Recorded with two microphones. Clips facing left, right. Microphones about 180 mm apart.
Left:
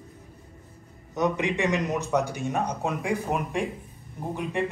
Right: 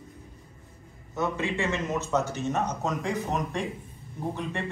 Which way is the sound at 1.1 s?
15° left (ahead or behind).